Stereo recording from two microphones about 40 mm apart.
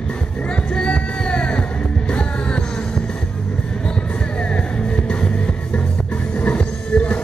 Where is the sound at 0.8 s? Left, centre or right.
Left.